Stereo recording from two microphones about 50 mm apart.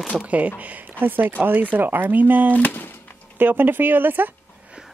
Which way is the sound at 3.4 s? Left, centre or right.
Right.